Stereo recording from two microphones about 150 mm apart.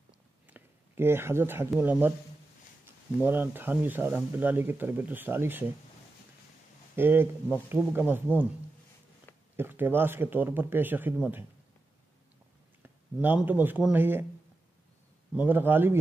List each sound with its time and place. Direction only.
0.5 s a sound: 15° right (ahead or behind)
1.7 s speech: 10° right (ahead or behind)
7.0 s speech: 15° right (ahead or behind)
9.6 s speech: 15° right (ahead or behind)
12.8 s speech: 10° right (ahead or behind)
15.3 s speech: 15° right (ahead or behind)